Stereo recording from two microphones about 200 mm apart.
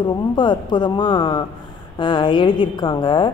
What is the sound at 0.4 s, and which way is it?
A man's voice, 25° left (ahead or behind).